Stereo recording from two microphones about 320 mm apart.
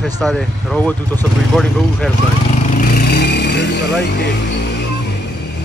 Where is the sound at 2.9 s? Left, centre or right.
Left.